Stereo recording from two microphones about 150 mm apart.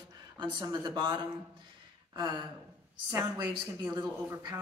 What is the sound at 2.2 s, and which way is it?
Speech, 30° right (ahead or behind).